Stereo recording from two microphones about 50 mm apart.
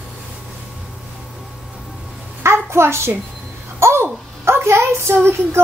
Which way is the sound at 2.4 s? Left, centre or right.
Right.